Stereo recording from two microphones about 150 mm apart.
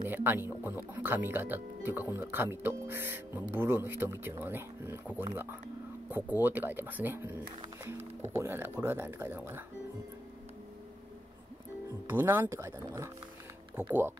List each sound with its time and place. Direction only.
0.1 s speech: 15° right (ahead or behind)
12.1 s speech: 15° right (ahead or behind)